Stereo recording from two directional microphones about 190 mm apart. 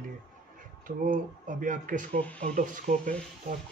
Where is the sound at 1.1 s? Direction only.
45° right (ahead or behind).